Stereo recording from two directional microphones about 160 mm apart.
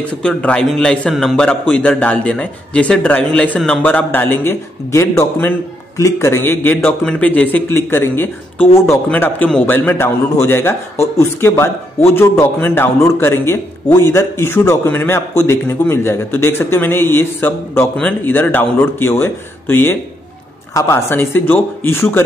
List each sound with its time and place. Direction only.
0.2 s a man's voice: 5° left (ahead or behind)